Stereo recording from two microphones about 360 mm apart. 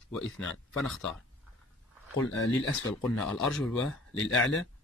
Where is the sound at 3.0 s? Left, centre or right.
Centre.